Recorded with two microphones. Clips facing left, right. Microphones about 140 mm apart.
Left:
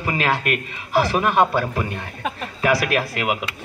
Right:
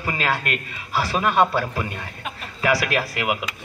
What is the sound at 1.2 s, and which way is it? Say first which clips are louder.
Speech: right 3 dB; 15° left (ahead or behind).